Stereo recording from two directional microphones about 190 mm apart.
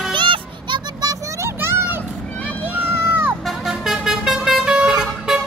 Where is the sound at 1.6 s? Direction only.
10° right (ahead or behind).